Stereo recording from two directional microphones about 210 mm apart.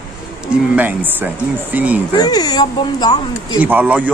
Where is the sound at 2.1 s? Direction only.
20° left (ahead or behind).